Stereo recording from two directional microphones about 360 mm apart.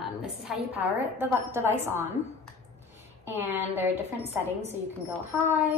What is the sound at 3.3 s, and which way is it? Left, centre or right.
Speech, centre.